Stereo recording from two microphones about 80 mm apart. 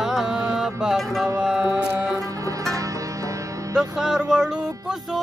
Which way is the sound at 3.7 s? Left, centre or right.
Centre.